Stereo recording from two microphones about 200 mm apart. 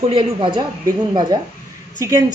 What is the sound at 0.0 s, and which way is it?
A woman's voice, 25° right (ahead or behind).